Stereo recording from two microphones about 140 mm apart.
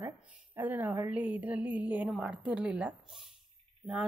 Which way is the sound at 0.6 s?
15° right (ahead or behind).